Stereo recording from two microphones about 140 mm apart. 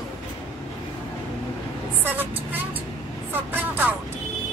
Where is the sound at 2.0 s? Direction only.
15° right (ahead or behind).